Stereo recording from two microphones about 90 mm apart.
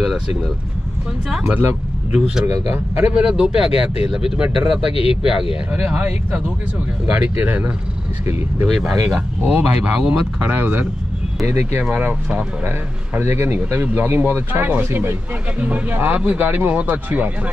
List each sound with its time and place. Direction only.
2.1 s speech: 10° right (ahead or behind)
2.4 s speech: 35° right (ahead or behind)
2.7 s speech: 20° right (ahead or behind)
4.9 s speech: 90° left
5.2 s speech: 10° right (ahead or behind)
8.6 s speech: 5° right (ahead or behind)
9.4 s speech: 20° right (ahead or behind)
11.8 s speech: 15° right (ahead or behind)
12.6 s speech: 25° right (ahead or behind)